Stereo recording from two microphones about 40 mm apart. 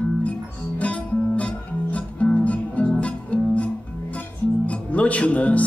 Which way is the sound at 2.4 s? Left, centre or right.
Left.